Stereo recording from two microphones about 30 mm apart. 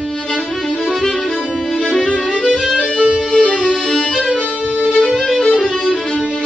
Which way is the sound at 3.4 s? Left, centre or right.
Left.